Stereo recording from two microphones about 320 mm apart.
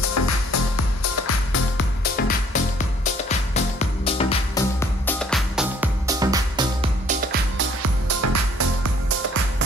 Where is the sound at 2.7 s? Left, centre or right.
Left; by 7.1 s centre.